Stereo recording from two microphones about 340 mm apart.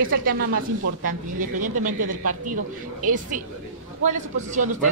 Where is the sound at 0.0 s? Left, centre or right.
Right.